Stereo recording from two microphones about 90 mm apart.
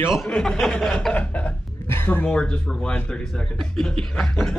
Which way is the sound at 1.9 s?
20° left (ahead or behind).